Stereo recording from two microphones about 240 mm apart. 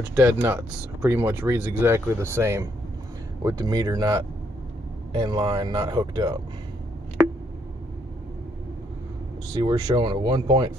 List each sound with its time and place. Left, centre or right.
0.0 s speech: centre
9.5 s speech: centre